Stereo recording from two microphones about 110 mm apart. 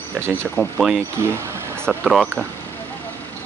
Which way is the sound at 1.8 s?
5° left (ahead or behind).